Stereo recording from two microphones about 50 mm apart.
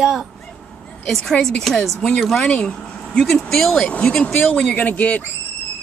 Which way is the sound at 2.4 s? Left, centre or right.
Centre.